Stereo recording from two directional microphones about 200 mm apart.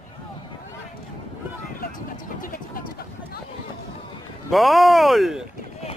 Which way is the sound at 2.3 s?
45° left (ahead or behind).